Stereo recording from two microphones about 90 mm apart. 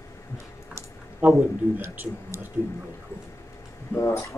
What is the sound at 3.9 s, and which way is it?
Speech, 25° left (ahead or behind).